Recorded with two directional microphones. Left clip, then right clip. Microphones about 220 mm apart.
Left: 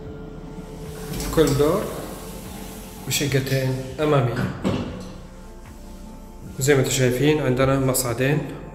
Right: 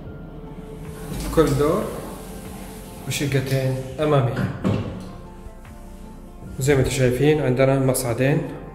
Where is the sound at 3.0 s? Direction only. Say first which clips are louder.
Left 1 dB; 5° left (ahead or behind).